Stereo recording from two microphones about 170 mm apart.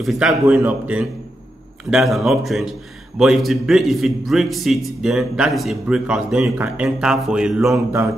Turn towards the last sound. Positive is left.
turn(degrees=-5)  # may be behind; listen again after turning